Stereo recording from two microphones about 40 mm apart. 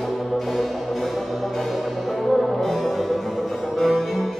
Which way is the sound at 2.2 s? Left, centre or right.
Centre.